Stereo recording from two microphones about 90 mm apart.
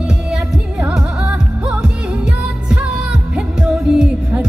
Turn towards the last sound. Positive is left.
turn(degrees=-10)  # may be behind; listen again after turning